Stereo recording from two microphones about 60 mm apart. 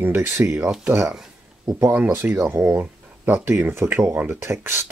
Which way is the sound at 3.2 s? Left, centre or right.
Right.